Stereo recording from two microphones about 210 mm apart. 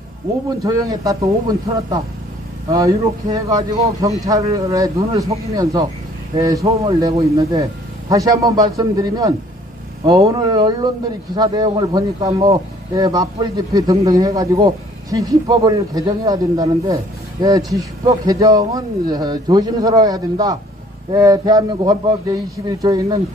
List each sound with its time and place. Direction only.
0.7 s a man's voice: 15° right (ahead or behind)
2.7 s a man's voice: 15° right (ahead or behind)